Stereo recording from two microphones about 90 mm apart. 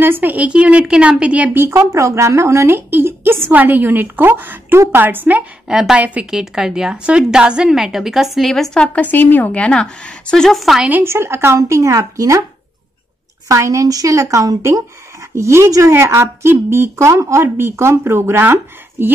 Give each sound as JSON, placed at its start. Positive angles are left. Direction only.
{"t": 0.0, "sound": "speech", "side_deg": -20}
{"t": 5.7, "sound": "a woman's voice", "side_deg": -5}
{"t": 8.8, "sound": "a woman's voice", "side_deg": 20}
{"t": 10.9, "sound": "speech", "side_deg": -25}
{"t": 13.5, "sound": "speech", "side_deg": -35}